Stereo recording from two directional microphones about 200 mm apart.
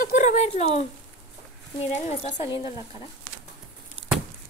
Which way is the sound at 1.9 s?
35° left (ahead or behind).